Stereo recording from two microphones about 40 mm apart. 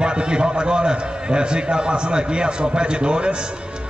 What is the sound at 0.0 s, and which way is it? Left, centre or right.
A man's voice, right.